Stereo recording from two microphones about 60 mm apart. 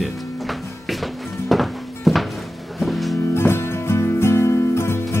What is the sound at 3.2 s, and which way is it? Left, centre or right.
Music, left.